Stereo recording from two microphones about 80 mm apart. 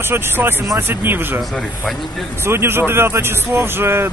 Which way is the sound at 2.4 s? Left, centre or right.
Right.